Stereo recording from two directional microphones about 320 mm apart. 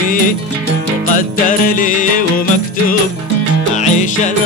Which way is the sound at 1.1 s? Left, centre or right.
Left.